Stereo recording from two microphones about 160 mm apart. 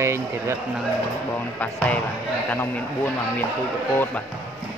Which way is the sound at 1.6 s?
10° left (ahead or behind).